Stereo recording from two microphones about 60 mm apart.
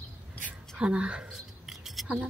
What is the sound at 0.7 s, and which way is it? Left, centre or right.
Speech, centre.